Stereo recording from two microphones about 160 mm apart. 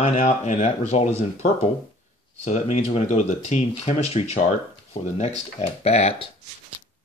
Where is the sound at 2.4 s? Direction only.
45° left (ahead or behind).